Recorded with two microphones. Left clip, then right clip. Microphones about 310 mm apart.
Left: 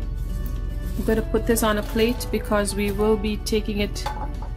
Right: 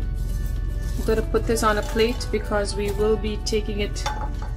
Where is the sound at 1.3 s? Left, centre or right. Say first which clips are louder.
Right 1 dB; left.